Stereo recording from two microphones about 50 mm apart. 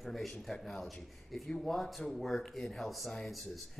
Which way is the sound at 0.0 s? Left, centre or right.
Centre.